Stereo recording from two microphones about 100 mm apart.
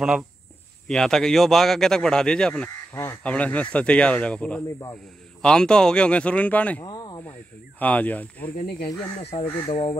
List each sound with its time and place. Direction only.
0.8 s speech: 5° left (ahead or behind)
2.9 s speech: 25° left (ahead or behind)
3.3 s speech: 15° left (ahead or behind)
6.8 s a sound: 45° left (ahead or behind)
7.8 s speech: 15° left (ahead or behind)
9.2 s speech: 90° left